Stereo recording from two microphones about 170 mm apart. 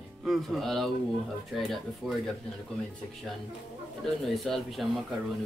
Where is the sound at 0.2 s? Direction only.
Centre (ahead or behind).